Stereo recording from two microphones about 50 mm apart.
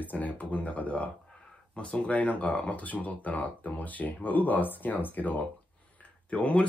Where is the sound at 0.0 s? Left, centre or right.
Left.